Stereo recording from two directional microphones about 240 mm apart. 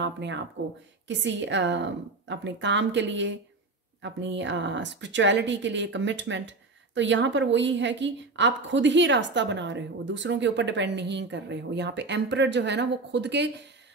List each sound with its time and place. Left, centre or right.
0.0 s speech: right